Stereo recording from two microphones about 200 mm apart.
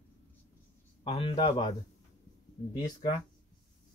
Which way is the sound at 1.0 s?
25° left (ahead or behind).